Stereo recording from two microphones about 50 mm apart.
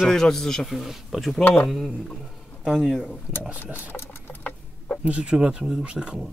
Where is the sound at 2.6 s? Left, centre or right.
Centre.